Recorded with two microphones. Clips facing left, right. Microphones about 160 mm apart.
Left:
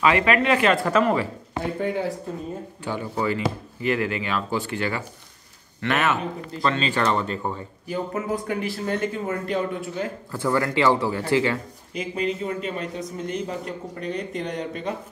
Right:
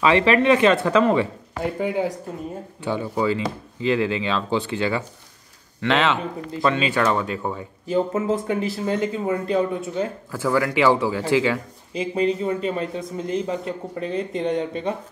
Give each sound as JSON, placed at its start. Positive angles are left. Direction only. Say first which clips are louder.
{"t": 0.0, "sound": "a man's voice", "louder": "right 3 dB", "side_deg": -25}
{"t": 5.9, "sound": "a man's voice", "louder": "right 3 dB", "side_deg": -90}
{"t": 6.5, "sound": "a man's voice", "louder": "right 3 dB", "side_deg": -15}
{"t": 7.9, "sound": "speech", "louder": "right 5 dB", "side_deg": -25}
{"t": 10.3, "sound": "a man's voice", "louder": "right 1 dB", "side_deg": -10}
{"t": 11.9, "sound": "speech", "louder": "right 5 dB", "side_deg": -30}